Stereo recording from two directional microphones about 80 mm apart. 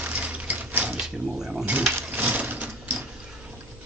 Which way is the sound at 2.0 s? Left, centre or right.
Centre.